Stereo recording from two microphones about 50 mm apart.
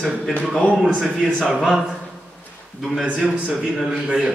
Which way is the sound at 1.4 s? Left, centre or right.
Centre.